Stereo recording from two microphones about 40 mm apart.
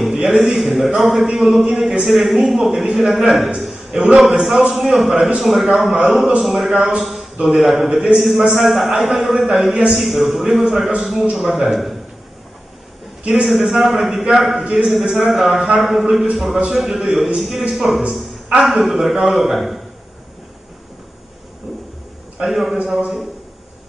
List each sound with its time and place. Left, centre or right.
0.0 s a man's voice: centre
13.3 s a man's voice: centre
14.6 s a man's voice: centre
14.9 s a man's voice: centre
22.5 s a man's voice: centre